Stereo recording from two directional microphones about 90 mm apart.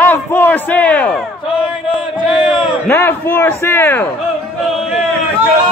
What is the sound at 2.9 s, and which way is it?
A man's voice, 25° left (ahead or behind).